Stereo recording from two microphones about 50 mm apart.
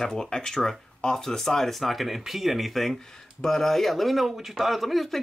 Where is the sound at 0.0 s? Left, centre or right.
Centre.